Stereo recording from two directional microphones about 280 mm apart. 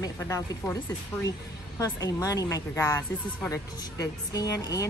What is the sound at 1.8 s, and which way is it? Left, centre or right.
A woman's voice, centre.